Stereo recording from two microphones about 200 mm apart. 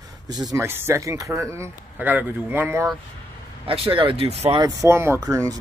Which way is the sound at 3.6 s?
30° right (ahead or behind).